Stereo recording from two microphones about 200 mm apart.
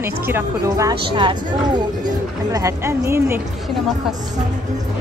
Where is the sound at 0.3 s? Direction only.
15° right (ahead or behind).